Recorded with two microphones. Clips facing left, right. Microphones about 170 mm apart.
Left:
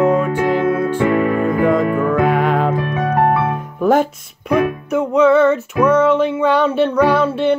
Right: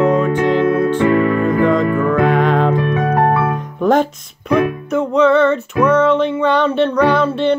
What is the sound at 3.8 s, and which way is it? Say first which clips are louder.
Music: even; 10° left (ahead or behind).